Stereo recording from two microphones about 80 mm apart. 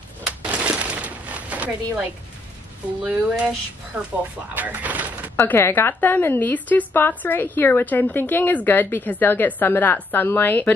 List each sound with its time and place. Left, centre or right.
0.5 s a sound: centre
3.0 s speech: centre
5.3 s speech: left